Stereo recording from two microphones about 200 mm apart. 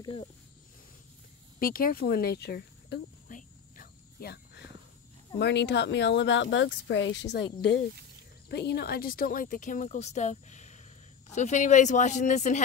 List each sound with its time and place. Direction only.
0.0 s speech: 25° left (ahead or behind)
1.6 s a sound: 45° left (ahead or behind)
5.4 s speech: 60° left (ahead or behind)
8.5 s speech: 55° left (ahead or behind); by 12.6 s 35° left (ahead or behind)